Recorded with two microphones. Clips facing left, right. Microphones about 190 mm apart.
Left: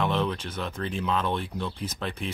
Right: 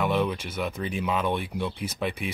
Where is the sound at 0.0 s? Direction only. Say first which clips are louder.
Right 1 dB; 10° right (ahead or behind).